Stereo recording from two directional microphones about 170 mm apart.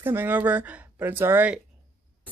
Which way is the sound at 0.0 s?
10° right (ahead or behind).